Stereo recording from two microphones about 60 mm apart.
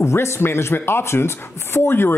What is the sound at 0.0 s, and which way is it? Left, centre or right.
Speech, left.